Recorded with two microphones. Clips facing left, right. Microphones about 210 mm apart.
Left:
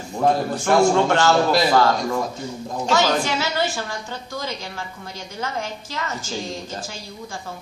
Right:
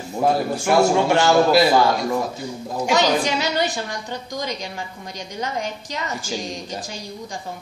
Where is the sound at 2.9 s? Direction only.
15° right (ahead or behind).